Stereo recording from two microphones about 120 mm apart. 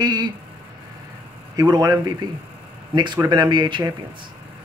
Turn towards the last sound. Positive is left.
turn(degrees=-40)  # may be behind; listen again after turning